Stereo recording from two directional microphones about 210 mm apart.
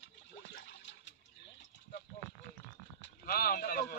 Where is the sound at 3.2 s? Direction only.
45° left (ahead or behind).